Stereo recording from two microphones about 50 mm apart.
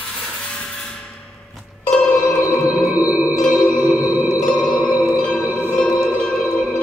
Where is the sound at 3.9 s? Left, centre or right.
Right.